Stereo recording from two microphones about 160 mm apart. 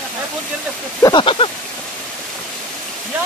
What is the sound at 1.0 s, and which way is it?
Speech, 30° left (ahead or behind).